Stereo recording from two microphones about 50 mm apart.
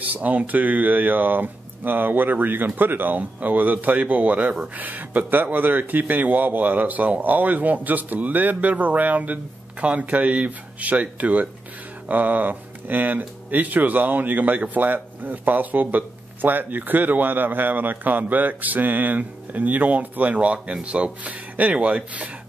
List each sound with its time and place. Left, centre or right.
0.0 s speech: right